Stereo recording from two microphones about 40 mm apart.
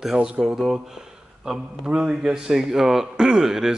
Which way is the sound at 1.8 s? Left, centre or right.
Right.